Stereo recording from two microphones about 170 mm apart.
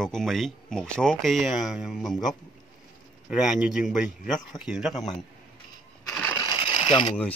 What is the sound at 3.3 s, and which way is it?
Speech, 5° right (ahead or behind).